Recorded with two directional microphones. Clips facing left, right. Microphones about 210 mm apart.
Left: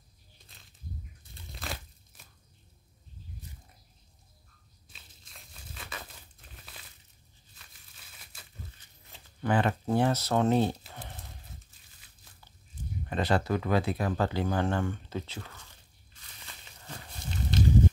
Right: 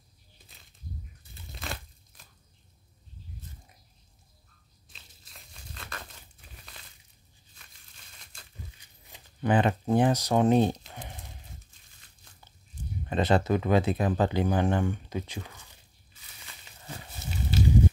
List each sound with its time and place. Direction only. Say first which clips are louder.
4.8 s a sound: even; centre (ahead or behind)
8.2 s crumpling: even; 5° left (ahead or behind)
8.7 s speech: right 1 dB; 15° right (ahead or behind)
13.1 s speech: right 3 dB; 20° right (ahead or behind)
17.2 s walk: right 1 dB; 5° right (ahead or behind)